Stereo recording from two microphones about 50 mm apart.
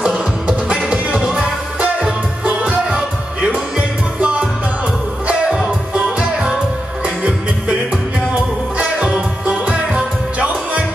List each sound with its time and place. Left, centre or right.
0.0 s music: centre
5.5 s music: centre
9.1 s music: right